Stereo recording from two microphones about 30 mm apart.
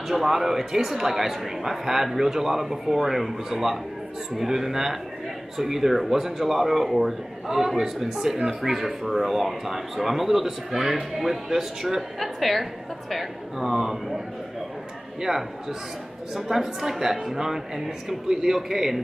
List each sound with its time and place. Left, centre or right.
0.1 s a man's voice: centre
16.3 s speech: centre